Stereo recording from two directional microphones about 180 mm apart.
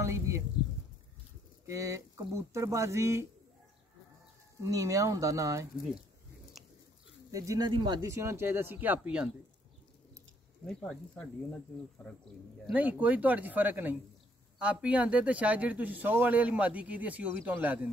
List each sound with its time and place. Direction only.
0.0 s a sound: 15° right (ahead or behind)
1.7 s speech: 15° right (ahead or behind)
4.6 s speech: 20° right (ahead or behind)
7.2 s speech: 20° right (ahead or behind)
10.6 s speech: 5° left (ahead or behind)
12.6 s speech: 10° right (ahead or behind)